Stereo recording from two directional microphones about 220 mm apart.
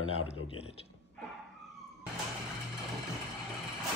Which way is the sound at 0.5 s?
25° left (ahead or behind).